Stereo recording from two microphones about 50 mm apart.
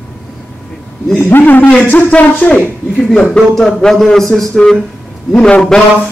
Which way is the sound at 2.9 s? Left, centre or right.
Centre.